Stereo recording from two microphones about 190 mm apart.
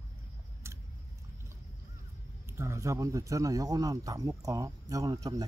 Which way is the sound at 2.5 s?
15° right (ahead or behind).